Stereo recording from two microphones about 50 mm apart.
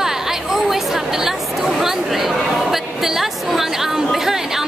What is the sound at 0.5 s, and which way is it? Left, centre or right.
Speech, centre.